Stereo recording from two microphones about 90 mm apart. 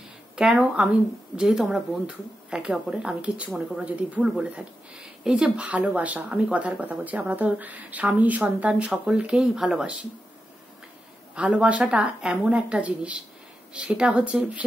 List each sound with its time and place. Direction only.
0.4 s speech: 5° right (ahead or behind)
11.3 s speech: 10° right (ahead or behind)